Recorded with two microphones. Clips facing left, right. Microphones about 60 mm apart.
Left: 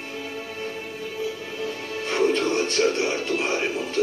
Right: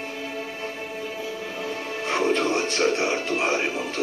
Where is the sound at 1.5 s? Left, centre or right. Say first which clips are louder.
Even; centre.